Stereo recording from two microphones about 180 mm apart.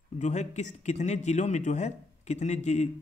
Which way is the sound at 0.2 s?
40° left (ahead or behind).